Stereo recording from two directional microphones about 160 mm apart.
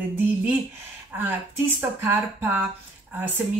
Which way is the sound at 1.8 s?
15° right (ahead or behind).